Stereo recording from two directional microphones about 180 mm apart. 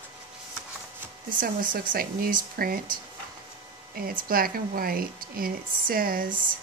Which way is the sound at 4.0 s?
55° right (ahead or behind).